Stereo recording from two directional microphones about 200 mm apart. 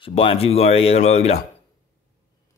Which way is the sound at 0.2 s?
30° left (ahead or behind).